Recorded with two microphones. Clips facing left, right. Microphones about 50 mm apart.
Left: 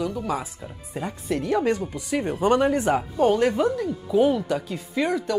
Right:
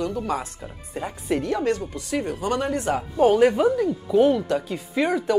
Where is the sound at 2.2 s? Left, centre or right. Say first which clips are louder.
Left 8 dB; left.